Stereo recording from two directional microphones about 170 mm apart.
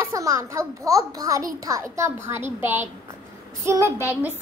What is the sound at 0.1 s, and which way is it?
A woman's voice, 20° right (ahead or behind).